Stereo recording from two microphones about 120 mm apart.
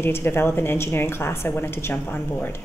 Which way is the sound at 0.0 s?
20° left (ahead or behind).